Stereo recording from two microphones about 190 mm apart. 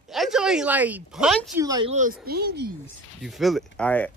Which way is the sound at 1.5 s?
20° right (ahead or behind).